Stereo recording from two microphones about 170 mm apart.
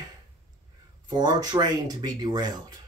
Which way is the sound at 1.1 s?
25° right (ahead or behind).